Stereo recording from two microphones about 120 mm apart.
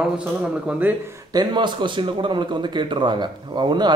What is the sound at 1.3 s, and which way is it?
A man's voice, 40° right (ahead or behind).